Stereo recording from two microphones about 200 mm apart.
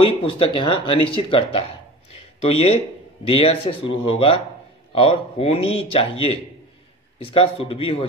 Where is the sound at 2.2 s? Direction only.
30° left (ahead or behind).